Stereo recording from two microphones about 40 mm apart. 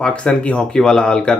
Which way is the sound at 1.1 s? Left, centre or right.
Left.